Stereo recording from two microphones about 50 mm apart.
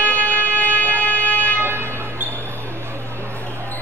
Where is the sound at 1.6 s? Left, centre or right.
Right.